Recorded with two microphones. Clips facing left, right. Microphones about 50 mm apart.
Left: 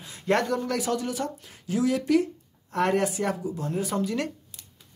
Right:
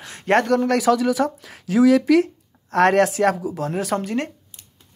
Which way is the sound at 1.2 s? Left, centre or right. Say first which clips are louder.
Right 10 dB; right.